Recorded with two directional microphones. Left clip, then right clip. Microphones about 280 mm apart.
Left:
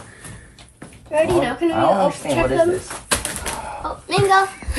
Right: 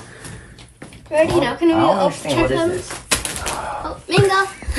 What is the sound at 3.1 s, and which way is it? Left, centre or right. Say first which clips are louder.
Typewriter: right 1 dB; centre.